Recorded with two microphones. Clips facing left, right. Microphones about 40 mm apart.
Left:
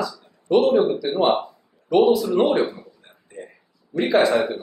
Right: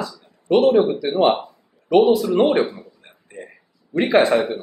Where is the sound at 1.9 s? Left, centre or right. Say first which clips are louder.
Right 2 dB; right.